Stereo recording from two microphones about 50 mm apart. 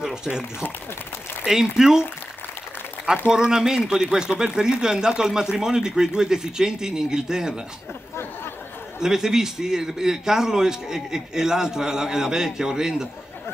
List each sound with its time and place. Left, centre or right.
0.0 s speech: centre
1.4 s speech: centre
3.3 s speech: centre
9.0 s speech: centre